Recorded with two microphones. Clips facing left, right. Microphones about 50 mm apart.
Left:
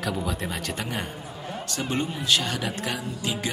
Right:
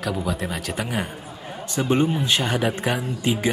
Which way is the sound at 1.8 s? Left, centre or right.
Right.